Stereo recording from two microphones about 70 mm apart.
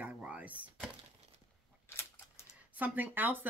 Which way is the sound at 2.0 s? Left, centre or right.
Left.